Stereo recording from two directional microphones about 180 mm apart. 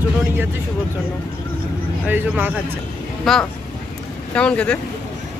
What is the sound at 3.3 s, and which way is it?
Speech, centre (ahead or behind).